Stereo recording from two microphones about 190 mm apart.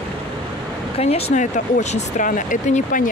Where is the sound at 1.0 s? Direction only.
35° left (ahead or behind).